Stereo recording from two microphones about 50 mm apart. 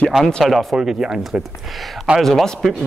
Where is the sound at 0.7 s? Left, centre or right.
Centre.